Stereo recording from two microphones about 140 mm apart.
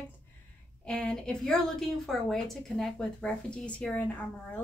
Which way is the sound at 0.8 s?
5° left (ahead or behind).